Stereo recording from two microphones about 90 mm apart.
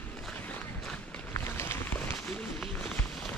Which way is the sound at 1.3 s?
30° left (ahead or behind).